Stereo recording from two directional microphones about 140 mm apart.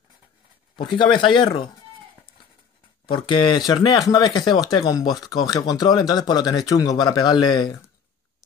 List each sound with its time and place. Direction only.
0.7 s speech: 35° left (ahead or behind)
3.3 s speech: 35° left (ahead or behind)